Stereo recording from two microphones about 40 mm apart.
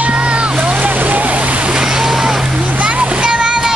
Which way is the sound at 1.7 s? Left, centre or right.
Centre.